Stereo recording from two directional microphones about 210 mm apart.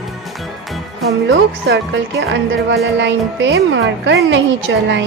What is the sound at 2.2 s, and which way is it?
A child's voice, 55° right (ahead or behind).